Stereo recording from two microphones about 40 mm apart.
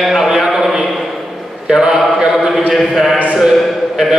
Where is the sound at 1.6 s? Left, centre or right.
Centre.